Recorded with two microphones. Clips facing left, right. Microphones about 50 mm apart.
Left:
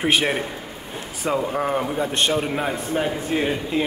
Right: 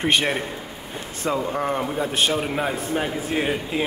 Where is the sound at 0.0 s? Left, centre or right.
Centre.